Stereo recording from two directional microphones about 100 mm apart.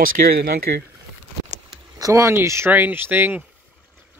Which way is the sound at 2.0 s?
35° right (ahead or behind).